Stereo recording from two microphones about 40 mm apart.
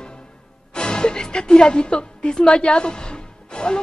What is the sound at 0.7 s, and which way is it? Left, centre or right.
A woman's voice, left.